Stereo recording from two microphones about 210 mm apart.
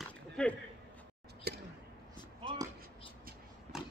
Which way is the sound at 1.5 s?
50° right (ahead or behind).